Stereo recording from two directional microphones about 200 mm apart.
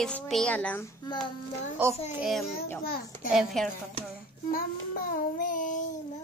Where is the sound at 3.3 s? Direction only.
Centre (ahead or behind).